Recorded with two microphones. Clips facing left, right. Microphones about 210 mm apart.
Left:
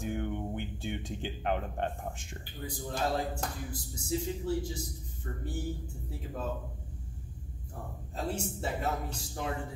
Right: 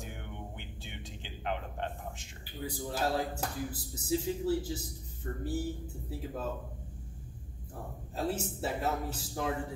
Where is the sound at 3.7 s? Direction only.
5° right (ahead or behind).